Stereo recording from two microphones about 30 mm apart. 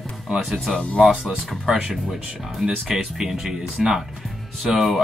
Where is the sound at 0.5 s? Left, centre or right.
Centre.